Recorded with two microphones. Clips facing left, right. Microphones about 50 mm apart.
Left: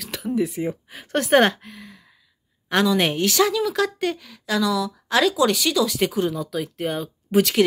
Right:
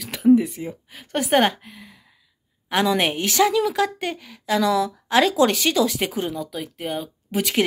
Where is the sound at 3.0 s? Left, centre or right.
Centre.